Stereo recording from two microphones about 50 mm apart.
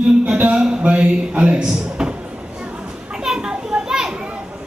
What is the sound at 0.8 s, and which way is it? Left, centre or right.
Speech, right.